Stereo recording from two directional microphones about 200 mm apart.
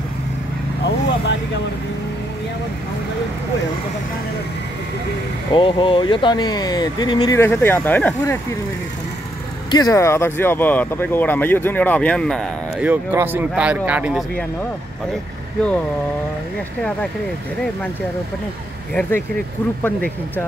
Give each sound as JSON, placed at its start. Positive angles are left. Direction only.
{"t": 0.8, "sound": "vehicle", "side_deg": 60}
{"t": 5.5, "sound": "speech", "side_deg": 25}
{"t": 9.7, "sound": "speech", "side_deg": 20}
{"t": 12.8, "sound": "speech", "side_deg": -10}